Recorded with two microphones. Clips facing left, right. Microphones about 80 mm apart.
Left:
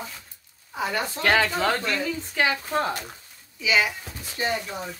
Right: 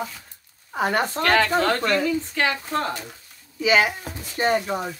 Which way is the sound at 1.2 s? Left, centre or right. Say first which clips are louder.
Right 1 dB; centre.